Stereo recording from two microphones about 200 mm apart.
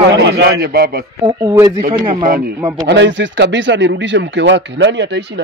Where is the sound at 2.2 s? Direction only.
45° right (ahead or behind).